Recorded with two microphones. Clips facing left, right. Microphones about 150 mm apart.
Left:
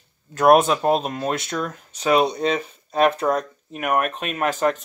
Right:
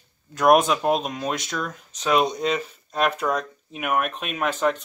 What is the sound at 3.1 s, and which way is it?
Speech, 35° left (ahead or behind).